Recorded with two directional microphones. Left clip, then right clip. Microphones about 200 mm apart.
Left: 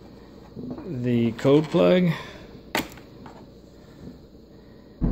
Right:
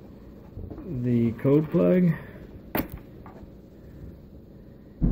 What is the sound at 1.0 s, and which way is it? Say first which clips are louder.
Speech: left 3 dB; 15° left (ahead or behind).